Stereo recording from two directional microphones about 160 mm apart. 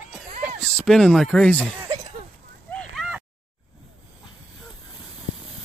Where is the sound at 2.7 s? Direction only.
5° left (ahead or behind).